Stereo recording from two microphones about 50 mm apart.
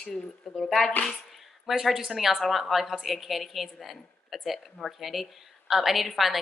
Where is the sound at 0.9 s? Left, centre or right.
Left.